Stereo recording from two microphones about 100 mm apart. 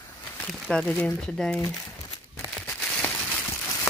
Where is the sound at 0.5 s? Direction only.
5° left (ahead or behind).